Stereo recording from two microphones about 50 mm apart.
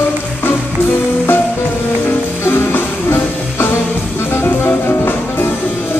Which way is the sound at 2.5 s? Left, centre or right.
Left.